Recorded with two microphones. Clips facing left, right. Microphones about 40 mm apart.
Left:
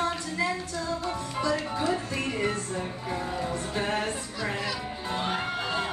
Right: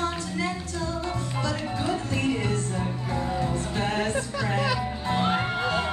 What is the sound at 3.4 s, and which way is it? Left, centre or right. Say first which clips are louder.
Music: right 2 dB; left.